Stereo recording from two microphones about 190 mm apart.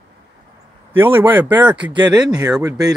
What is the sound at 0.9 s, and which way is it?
Speech, 10° right (ahead or behind).